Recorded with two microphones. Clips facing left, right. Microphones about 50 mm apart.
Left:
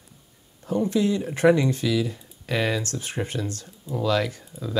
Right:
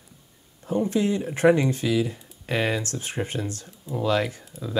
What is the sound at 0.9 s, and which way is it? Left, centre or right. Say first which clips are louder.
Speech: left 1 dB; right.